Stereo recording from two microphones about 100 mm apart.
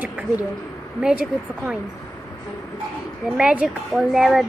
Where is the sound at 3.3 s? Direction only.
10° right (ahead or behind).